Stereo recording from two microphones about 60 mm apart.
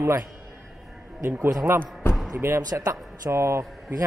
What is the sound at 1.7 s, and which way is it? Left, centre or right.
Speech, right.